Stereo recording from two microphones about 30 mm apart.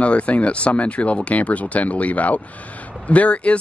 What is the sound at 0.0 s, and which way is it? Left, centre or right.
Speech, left.